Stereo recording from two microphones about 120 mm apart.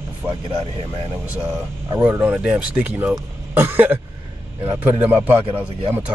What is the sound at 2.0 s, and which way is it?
Speech, 10° right (ahead or behind).